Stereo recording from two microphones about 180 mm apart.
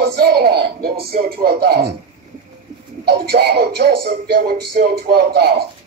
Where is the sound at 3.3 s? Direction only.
65° right (ahead or behind).